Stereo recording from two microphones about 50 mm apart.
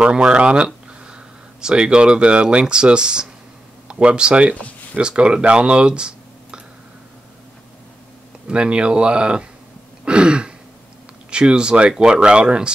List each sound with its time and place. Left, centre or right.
0.0 s speech: right
8.5 s speech: right
10.0 s throat clearing: centre
11.2 s speech: centre